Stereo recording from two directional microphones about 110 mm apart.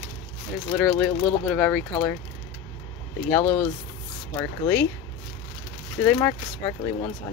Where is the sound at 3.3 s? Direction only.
10° left (ahead or behind).